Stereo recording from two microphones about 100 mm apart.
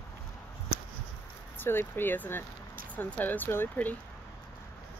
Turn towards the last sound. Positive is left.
turn(degrees=20)  # may be behind; listen again after turning